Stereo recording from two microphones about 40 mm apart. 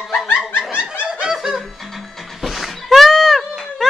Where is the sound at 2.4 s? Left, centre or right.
Centre.